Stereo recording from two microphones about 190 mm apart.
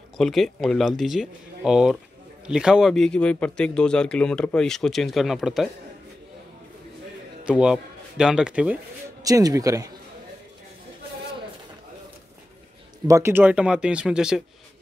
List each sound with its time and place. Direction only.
0.2 s speech: centre (ahead or behind)
7.4 s a man's voice: 5° right (ahead or behind)
9.2 s speech: 20° right (ahead or behind)
13.0 s speech: 15° right (ahead or behind)